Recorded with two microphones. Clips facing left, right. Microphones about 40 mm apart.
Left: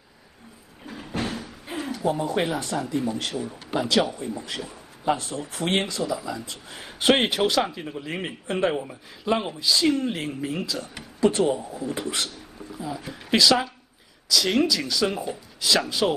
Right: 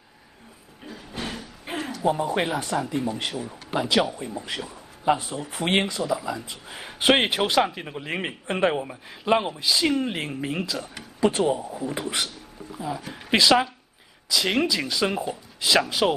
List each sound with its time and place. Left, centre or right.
1.7 s a sound: right
2.0 s speech: centre
2.7 s speech: right
3.0 s speech: centre
11.1 s speech: centre
13.3 s speech: right